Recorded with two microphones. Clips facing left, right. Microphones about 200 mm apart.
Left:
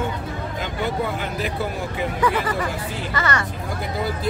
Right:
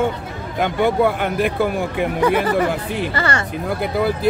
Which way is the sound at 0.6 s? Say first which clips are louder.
Right 10 dB; 60° right (ahead or behind).